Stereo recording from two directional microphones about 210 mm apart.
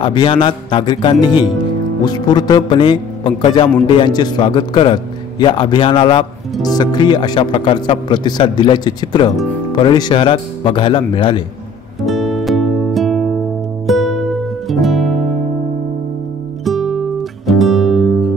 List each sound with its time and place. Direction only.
0.0 s speech: 20° left (ahead or behind)
12.1 s music: centre (ahead or behind)
16.6 s music: centre (ahead or behind)